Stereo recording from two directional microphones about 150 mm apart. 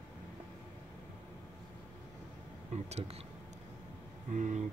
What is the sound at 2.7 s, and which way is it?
Speech, 45° right (ahead or behind).